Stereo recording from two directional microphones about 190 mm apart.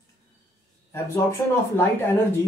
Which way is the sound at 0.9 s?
15° left (ahead or behind).